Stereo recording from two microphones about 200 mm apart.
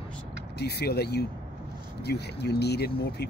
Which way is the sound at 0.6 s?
55° left (ahead or behind).